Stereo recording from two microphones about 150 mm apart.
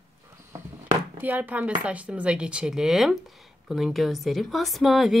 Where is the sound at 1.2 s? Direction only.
10° right (ahead or behind).